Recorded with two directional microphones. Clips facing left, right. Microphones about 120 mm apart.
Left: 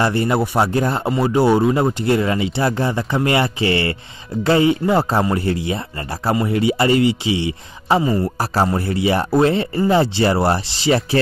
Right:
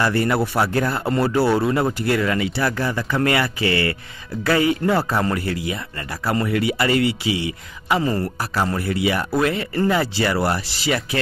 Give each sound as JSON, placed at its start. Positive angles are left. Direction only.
{"t": 0.0, "sound": "speech", "side_deg": 20}